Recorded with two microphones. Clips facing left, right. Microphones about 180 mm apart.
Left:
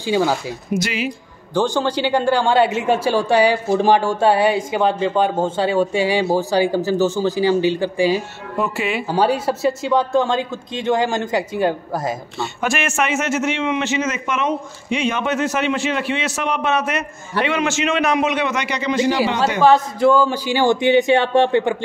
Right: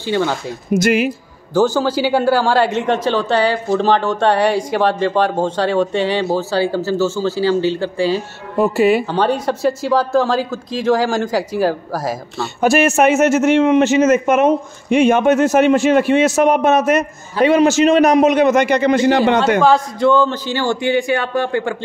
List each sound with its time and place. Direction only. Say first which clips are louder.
0.0 s a man's voice: even; 10° left (ahead or behind)
0.7 s a man's voice: right 8 dB; 50° right (ahead or behind)
1.5 s a man's voice: right 4 dB; 5° right (ahead or behind); by 8.2 s 15° left (ahead or behind)
8.5 s speech: right 9 dB; 40° right (ahead or behind)
9.1 s speech: right 1 dB; 10° left (ahead or behind)
12.6 s a man's voice: right 9 dB; 40° right (ahead or behind); by 19.4 s 55° right (ahead or behind)
19.6 s a man's voice: even; 5° left (ahead or behind); by 21.7 s 20° left (ahead or behind)